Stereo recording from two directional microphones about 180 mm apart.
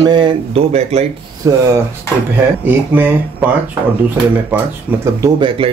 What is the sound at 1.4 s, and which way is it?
Speech, 20° right (ahead or behind).